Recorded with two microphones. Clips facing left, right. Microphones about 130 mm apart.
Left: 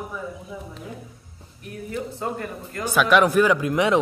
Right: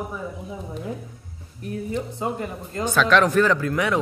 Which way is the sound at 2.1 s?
15° right (ahead or behind).